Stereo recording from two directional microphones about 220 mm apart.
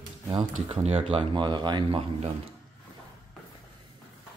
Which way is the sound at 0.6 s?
30° right (ahead or behind).